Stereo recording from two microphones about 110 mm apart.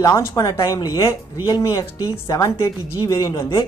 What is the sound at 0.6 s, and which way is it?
Speech, 45° left (ahead or behind).